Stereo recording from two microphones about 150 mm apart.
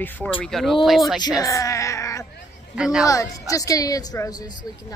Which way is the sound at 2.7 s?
5° right (ahead or behind).